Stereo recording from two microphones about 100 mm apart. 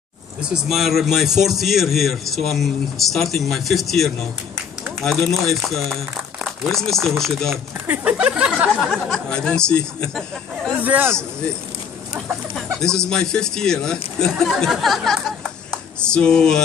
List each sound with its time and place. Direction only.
0.5 s a man's voice: centre (ahead or behind)
7.8 s speech: 15° right (ahead or behind)
8.9 s speech: 10° left (ahead or behind)
10.8 s speech: 20° right (ahead or behind)
12.7 s a man's voice: 5° left (ahead or behind)